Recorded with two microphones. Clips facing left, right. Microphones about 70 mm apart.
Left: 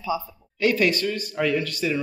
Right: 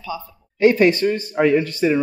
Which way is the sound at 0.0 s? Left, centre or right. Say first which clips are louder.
Left 3 dB; centre.